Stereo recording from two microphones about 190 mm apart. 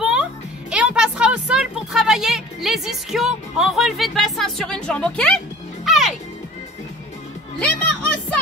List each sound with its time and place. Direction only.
0.0 s music: 5° right (ahead or behind)
7.6 s speech: 5° left (ahead or behind)